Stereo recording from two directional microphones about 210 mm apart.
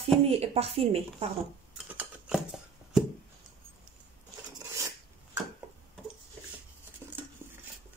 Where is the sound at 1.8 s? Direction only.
5° right (ahead or behind).